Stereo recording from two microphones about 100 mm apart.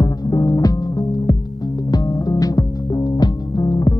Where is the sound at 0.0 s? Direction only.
40° left (ahead or behind).